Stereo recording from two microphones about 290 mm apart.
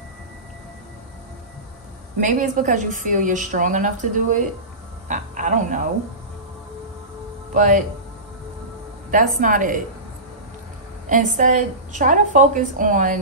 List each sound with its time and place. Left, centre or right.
2.1 s a woman's voice: right
7.5 s a woman's voice: right
9.4 s a woman's voice: right
11.1 s a woman's voice: right